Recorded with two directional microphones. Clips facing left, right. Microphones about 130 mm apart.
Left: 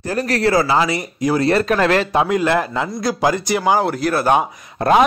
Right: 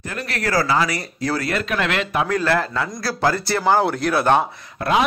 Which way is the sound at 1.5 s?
40° left (ahead or behind).